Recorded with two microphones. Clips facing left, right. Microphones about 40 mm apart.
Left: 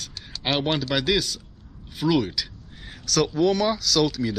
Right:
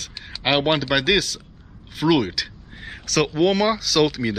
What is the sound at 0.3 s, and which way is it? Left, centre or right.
A man's voice, right.